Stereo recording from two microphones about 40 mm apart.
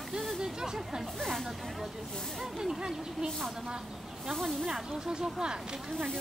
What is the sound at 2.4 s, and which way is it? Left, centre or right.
Speech, centre.